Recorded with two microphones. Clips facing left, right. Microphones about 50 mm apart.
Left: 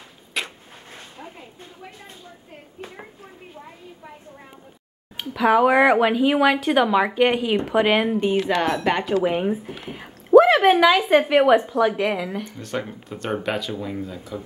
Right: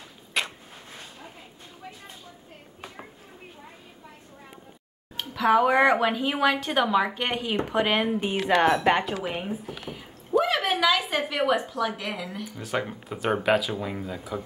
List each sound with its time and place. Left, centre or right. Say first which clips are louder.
0.3 s a sound: even; centre
5.1 s speech: left 3 dB; centre
8.2 s speech: left 2 dB; centre
9.4 s speech: left 8 dB; left
9.9 s a sound: left 12 dB; left
10.7 s a woman's voice: left 8 dB; centre
12.4 s speech: even; centre